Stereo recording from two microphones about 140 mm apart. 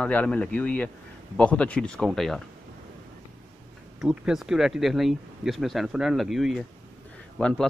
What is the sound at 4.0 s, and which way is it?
Speech, 5° right (ahead or behind).